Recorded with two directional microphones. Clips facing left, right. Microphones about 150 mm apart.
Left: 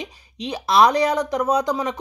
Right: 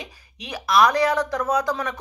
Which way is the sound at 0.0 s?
25° left (ahead or behind).